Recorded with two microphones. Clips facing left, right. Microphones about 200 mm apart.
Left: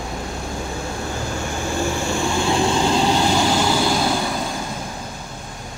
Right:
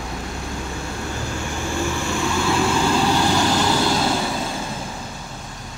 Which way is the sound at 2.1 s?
30° left (ahead or behind).